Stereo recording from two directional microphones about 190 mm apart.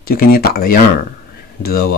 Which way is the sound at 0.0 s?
50° left (ahead or behind).